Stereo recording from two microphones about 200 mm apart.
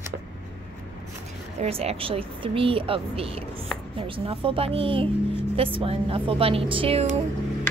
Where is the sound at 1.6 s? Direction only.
30° right (ahead or behind).